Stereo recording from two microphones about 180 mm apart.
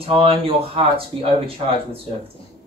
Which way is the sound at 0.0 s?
30° right (ahead or behind).